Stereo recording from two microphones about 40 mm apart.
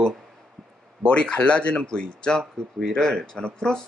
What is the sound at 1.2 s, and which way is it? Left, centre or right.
Speech, left.